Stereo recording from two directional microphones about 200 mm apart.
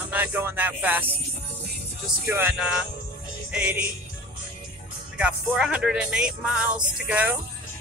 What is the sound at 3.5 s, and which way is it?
Speech, 5° right (ahead or behind).